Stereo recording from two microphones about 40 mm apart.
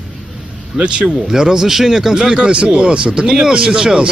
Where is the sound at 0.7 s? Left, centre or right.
Right.